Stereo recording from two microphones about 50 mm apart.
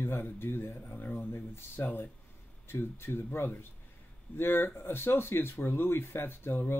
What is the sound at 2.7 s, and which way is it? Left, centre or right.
Speech, left.